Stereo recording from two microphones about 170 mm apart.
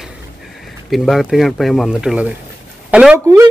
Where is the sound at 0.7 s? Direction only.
Centre (ahead or behind).